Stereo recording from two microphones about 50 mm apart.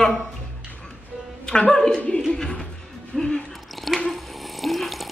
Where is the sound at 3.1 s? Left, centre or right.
Centre.